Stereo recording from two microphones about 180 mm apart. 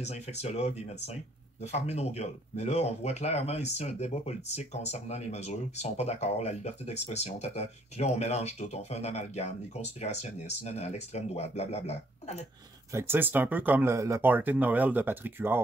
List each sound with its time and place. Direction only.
0.0 s speech: 35° left (ahead or behind)
12.9 s speech: 10° right (ahead or behind)